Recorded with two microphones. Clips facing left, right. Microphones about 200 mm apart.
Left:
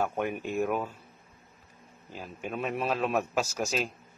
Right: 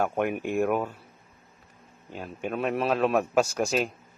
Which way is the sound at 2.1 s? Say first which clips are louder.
Right 4 dB; centre (ahead or behind).